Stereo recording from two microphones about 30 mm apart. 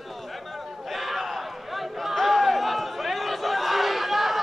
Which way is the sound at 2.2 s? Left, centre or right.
Centre.